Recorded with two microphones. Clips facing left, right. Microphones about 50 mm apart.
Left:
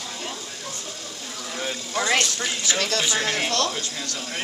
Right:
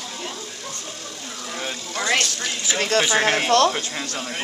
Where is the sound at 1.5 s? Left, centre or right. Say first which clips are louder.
Left 2 dB; centre.